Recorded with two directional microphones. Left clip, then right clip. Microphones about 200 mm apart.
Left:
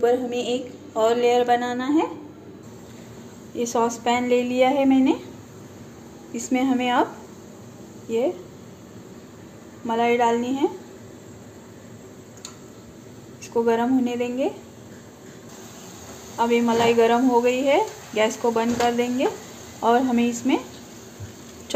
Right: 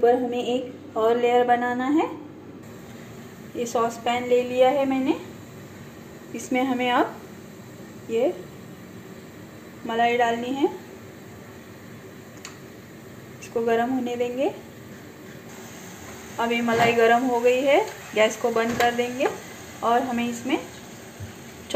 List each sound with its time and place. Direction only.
0.0 s a woman's voice: centre (ahead or behind)
3.5 s a woman's voice: centre (ahead or behind)
6.3 s a woman's voice: centre (ahead or behind)
9.8 s a woman's voice: centre (ahead or behind)
13.7 s a woman's voice: centre (ahead or behind)
16.3 s a woman's voice: centre (ahead or behind); by 20.6 s 15° left (ahead or behind)